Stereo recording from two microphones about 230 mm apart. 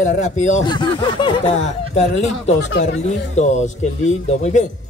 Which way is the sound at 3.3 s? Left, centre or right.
Left.